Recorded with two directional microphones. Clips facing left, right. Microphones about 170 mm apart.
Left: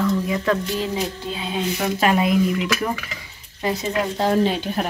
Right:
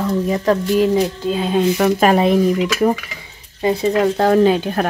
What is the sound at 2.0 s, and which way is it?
Speech, 35° right (ahead or behind).